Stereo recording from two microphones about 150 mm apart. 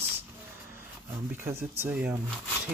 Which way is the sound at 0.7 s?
15° right (ahead or behind).